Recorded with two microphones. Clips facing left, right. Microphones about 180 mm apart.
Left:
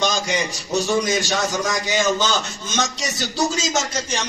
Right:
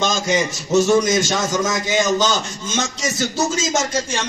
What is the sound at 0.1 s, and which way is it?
Speech, 45° right (ahead or behind).